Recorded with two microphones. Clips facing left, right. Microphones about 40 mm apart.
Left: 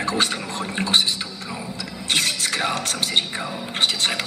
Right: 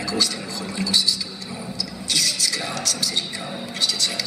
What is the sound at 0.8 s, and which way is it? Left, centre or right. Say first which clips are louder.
Speech: left 3 dB; left.